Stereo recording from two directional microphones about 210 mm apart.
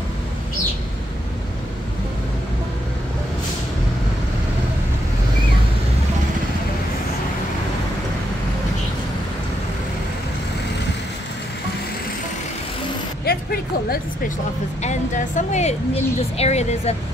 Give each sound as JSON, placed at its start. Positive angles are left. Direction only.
{"t": 13.2, "sound": "music", "side_deg": 45}
{"t": 14.8, "sound": "speech", "side_deg": 35}